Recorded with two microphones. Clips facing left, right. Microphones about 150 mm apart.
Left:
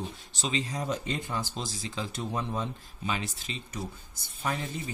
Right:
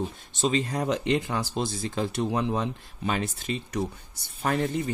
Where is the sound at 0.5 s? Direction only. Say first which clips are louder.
Right 3 dB; 60° right (ahead or behind); by 1.4 s 90° right.